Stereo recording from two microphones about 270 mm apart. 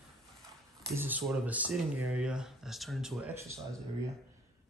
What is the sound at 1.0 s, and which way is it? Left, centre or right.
Speech, centre.